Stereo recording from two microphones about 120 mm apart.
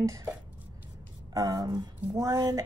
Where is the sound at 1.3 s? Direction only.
30° right (ahead or behind).